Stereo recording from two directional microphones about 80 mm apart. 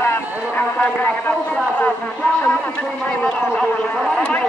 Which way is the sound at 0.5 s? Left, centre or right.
Centre.